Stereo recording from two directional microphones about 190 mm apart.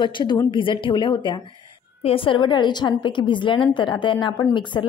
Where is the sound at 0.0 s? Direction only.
25° left (ahead or behind).